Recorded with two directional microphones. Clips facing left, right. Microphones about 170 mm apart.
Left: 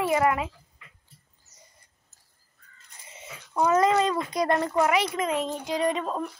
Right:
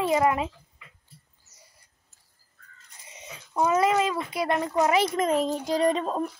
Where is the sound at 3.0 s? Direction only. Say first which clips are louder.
Even; 15° right (ahead or behind).